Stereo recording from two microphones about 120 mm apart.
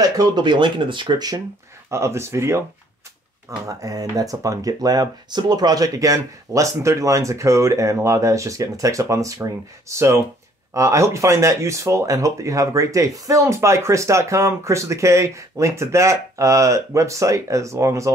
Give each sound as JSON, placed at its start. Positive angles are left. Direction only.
{"t": 0.0, "sound": "speech", "side_deg": -35}
{"t": 1.9, "sound": "speech", "side_deg": -25}
{"t": 3.6, "sound": "speech", "side_deg": -30}